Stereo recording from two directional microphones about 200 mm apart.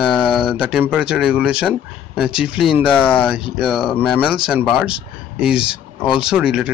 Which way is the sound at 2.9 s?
10° left (ahead or behind).